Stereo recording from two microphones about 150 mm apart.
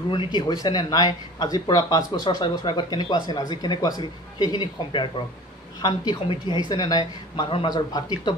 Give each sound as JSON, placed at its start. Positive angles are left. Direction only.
{"t": 0.1, "sound": "a woman's voice", "side_deg": 35}